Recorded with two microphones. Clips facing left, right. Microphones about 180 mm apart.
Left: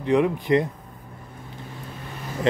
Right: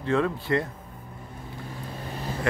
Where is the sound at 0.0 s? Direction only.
15° left (ahead or behind).